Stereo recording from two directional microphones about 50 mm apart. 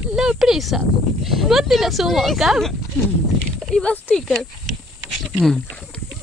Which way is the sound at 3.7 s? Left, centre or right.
Left.